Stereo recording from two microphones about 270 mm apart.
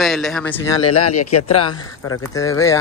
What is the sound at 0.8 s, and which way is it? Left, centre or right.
Speech, left.